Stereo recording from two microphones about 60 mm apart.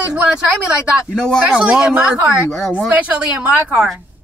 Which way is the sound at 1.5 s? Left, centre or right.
Centre.